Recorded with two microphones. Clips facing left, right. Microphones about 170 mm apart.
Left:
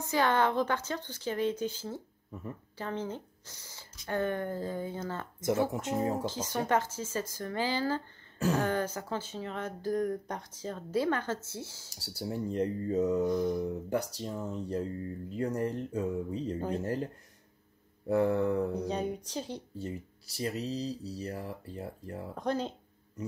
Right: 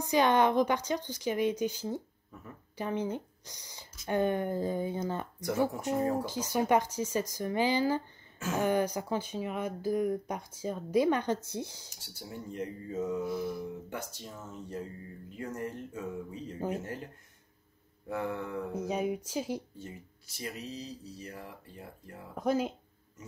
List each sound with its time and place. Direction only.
0.0 s speech: 15° right (ahead or behind)
5.4 s speech: 20° left (ahead or behind)
6.2 s speech: 10° right (ahead or behind)
11.9 s speech: 35° left (ahead or behind)
13.3 s speech: 5° right (ahead or behind)
13.6 s speech: 35° left (ahead or behind)
16.5 s speech: 10° right (ahead or behind)
16.8 s speech: 35° left (ahead or behind)
18.9 s speech: 5° right (ahead or behind)
19.8 s speech: 35° left (ahead or behind)
22.3 s speech: 10° right (ahead or behind)